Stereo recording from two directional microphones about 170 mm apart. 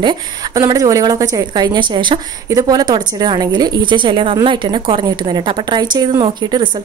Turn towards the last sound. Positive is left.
turn(degrees=-25)  # may be behind; listen again after turning